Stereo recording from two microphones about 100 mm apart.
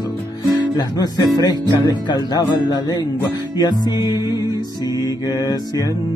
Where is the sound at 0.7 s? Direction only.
40° left (ahead or behind).